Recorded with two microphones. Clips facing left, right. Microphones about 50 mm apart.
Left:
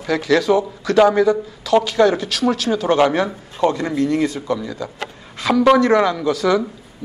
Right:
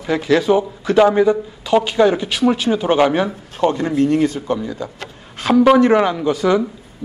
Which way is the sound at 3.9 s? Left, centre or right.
Right.